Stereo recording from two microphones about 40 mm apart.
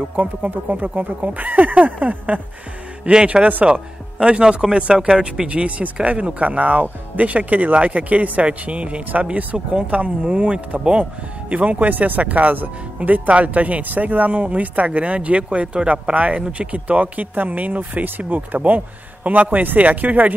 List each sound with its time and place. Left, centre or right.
0.1 s speech: right
10.2 s speech: right